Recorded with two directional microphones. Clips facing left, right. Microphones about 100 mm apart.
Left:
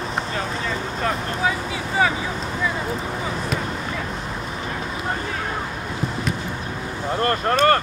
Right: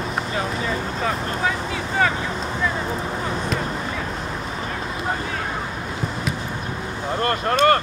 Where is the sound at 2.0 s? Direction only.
5° left (ahead or behind).